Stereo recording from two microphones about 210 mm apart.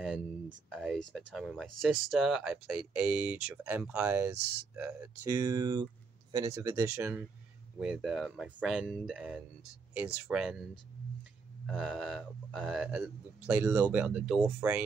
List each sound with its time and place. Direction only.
0.7 s speech: centre (ahead or behind)
11.6 s speech: centre (ahead or behind)